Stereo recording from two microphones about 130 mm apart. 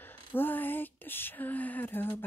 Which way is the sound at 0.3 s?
15° left (ahead or behind).